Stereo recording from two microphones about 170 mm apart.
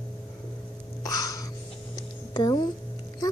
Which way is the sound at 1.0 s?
20° left (ahead or behind).